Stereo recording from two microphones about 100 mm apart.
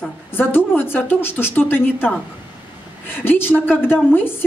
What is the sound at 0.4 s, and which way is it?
A woman's voice, 20° left (ahead or behind).